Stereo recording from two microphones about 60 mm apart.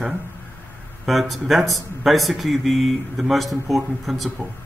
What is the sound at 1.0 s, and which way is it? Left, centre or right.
A man's voice, centre.